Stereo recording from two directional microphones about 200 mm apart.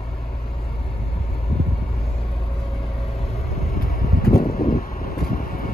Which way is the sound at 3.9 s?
45° left (ahead or behind).